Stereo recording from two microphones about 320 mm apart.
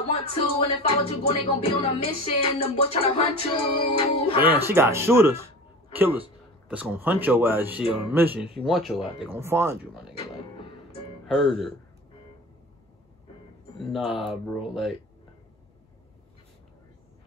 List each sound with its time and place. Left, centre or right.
0.1 s music: centre
4.5 s speech: centre
11.3 s speech: centre
13.8 s speech: centre